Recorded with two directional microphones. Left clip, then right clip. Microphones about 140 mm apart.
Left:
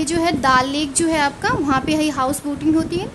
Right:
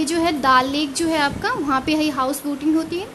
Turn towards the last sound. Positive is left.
turn(degrees=5)  # may be behind; listen again after turning